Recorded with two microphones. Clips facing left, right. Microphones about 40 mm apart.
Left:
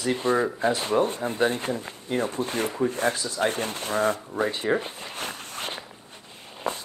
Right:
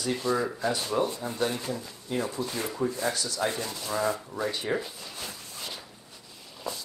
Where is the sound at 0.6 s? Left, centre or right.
Left.